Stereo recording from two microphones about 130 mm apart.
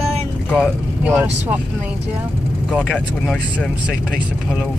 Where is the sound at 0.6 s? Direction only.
15° right (ahead or behind).